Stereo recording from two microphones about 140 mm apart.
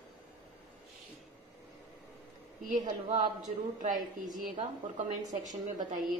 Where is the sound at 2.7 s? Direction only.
60° right (ahead or behind).